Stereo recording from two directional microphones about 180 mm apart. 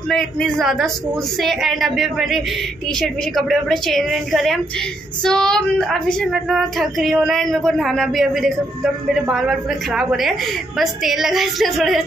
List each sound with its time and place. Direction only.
0.1 s a woman's voice: centre (ahead or behind)